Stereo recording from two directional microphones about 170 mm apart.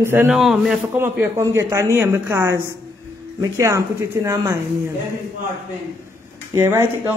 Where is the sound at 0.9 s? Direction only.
15° right (ahead or behind).